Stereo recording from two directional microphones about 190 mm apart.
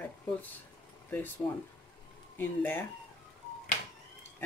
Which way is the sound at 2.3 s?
10° left (ahead or behind).